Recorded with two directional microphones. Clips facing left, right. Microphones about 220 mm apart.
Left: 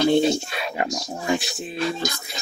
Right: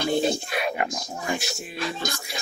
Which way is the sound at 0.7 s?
25° left (ahead or behind).